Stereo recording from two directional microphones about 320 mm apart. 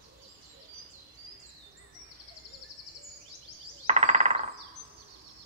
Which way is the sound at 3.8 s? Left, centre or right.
Right.